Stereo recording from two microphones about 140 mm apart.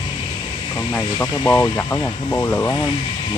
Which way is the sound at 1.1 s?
15° left (ahead or behind).